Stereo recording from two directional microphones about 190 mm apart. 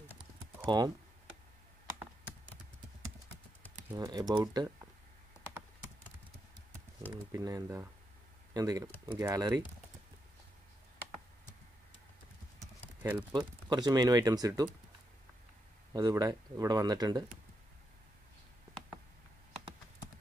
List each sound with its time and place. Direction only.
0.7 s speech: 20° right (ahead or behind)
3.9 s speech: 20° right (ahead or behind)
7.3 s speech: 15° right (ahead or behind)
13.3 s speech: 20° right (ahead or behind)
15.9 s speech: 20° right (ahead or behind)